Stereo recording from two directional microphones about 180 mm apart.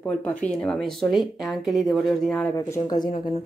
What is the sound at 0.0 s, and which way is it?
Speech, 5° left (ahead or behind).